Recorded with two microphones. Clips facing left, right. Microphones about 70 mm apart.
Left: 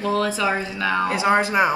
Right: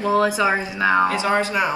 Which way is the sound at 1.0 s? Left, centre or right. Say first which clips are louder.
Left 1 dB; left.